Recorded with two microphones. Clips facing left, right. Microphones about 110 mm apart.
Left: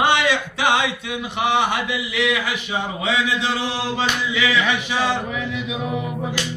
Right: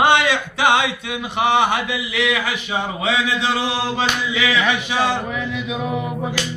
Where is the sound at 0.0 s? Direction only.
55° right (ahead or behind).